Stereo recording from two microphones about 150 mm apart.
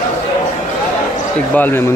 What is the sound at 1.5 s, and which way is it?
Speech, 10° left (ahead or behind).